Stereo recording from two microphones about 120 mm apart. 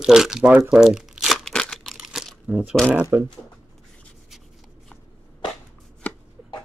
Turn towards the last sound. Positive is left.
turn(degrees=15)  # may be behind; listen again after turning